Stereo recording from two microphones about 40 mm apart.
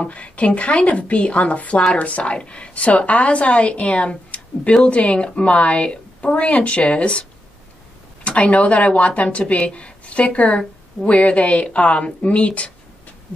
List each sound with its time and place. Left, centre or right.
0.0 s a woman's voice: left